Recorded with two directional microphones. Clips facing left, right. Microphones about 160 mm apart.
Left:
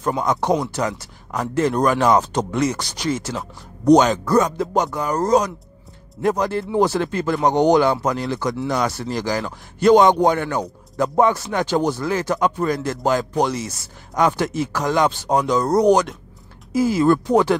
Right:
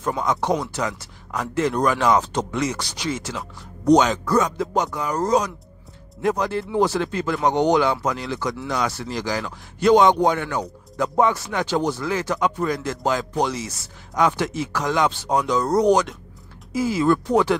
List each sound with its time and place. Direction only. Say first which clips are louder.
0.2 s speech: left 2 dB; 45° left (ahead or behind)